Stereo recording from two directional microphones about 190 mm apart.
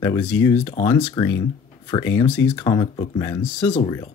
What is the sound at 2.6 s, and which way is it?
Speech, 25° left (ahead or behind).